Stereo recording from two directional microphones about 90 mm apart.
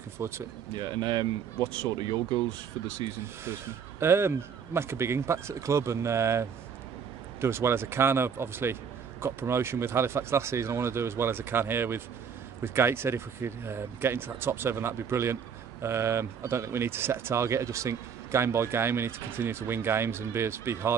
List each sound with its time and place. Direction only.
0.2 s speech: 30° right (ahead or behind)
0.7 s speech: 55° right (ahead or behind)
3.4 s speech: 30° right (ahead or behind)